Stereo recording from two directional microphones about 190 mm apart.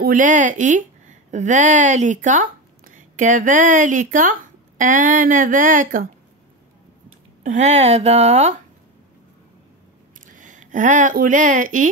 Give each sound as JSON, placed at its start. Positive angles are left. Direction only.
{"t": 0.0, "sound": "speech", "side_deg": -40}
{"t": 7.4, "sound": "speech", "side_deg": -35}
{"t": 10.2, "sound": "speech", "side_deg": -40}